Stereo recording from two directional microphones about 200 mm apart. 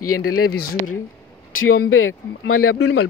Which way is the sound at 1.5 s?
90° left.